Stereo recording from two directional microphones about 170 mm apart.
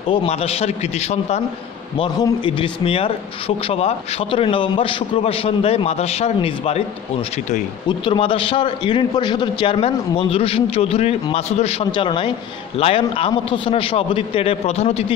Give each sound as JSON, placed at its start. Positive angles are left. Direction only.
{"t": 0.1, "sound": "a man's voice", "side_deg": 35}
{"t": 2.0, "sound": "a man's voice", "side_deg": 25}
{"t": 8.0, "sound": "a man's voice", "side_deg": 30}